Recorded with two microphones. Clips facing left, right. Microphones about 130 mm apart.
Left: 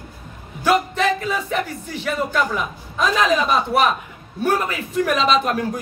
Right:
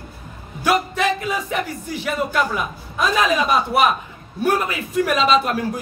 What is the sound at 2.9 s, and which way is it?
Speech, 10° right (ahead or behind).